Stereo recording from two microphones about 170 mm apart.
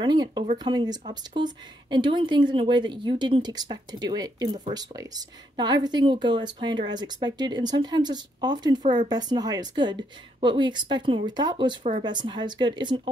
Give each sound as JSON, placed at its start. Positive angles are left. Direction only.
{"t": 0.0, "sound": "speech", "side_deg": -25}